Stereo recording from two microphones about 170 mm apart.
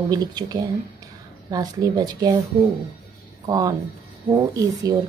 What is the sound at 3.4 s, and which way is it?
Speech, 20° right (ahead or behind).